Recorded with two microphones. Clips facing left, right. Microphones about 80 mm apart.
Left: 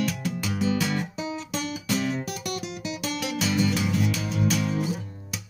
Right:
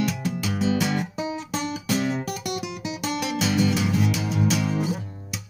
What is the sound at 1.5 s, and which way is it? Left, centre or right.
Music, right.